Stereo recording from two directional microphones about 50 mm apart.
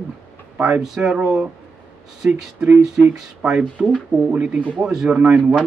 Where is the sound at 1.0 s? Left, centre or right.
Right.